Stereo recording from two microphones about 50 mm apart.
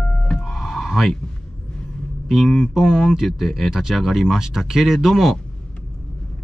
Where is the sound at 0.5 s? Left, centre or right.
Centre.